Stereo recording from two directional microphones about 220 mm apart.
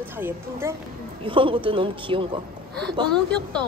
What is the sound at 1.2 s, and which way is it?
A man's voice, 25° right (ahead or behind).